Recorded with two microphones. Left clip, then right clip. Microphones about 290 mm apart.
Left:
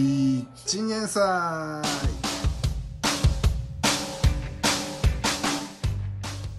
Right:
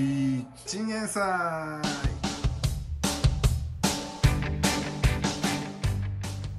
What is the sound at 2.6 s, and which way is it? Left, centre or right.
Music, centre.